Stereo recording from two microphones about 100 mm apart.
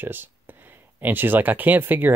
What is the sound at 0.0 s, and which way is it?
Speech, 20° right (ahead or behind).